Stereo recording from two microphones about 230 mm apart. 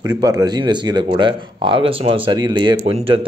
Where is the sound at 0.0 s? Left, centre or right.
Centre.